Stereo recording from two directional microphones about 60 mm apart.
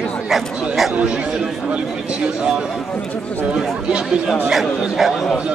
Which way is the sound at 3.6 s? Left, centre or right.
Centre.